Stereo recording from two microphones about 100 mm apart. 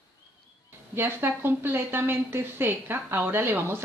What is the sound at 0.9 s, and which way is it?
A woman's voice, 20° right (ahead or behind).